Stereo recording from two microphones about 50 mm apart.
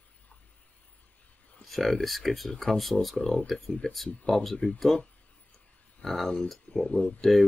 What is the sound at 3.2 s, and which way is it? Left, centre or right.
Speech, centre.